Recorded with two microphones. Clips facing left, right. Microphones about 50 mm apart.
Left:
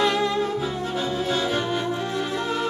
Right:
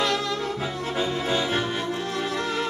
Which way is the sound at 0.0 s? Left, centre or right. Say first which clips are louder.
Left 4 dB; centre.